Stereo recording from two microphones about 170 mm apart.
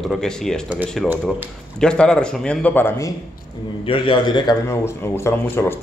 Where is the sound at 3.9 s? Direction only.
30° left (ahead or behind).